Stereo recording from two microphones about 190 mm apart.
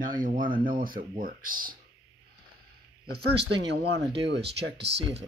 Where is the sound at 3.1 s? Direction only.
60° right (ahead or behind).